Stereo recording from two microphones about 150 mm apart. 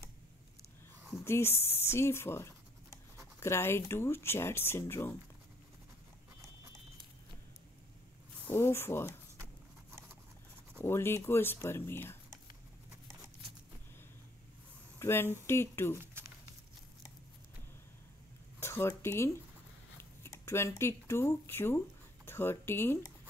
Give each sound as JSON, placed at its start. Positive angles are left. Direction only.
{"t": 1.2, "sound": "speech", "side_deg": 15}
{"t": 8.5, "sound": "speech", "side_deg": 15}
{"t": 9.4, "sound": "horse", "side_deg": -15}
{"t": 10.8, "sound": "speech", "side_deg": 15}
{"t": 15.0, "sound": "speech", "side_deg": 15}
{"t": 18.6, "sound": "speech", "side_deg": 15}